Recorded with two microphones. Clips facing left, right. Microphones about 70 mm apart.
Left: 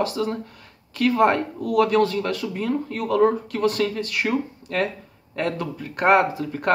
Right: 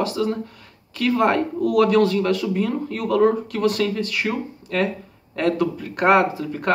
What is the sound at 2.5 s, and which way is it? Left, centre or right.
Speech, left.